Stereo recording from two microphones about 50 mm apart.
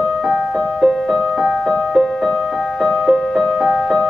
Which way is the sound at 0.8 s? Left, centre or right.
Centre.